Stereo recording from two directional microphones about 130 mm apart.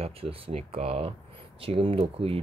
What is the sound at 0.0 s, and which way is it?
Speech, 50° right (ahead or behind).